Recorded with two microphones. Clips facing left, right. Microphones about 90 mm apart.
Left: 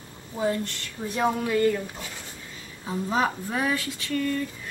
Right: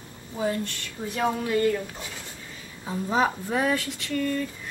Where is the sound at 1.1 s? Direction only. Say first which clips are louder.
Left 1 dB; 20° left (ahead or behind).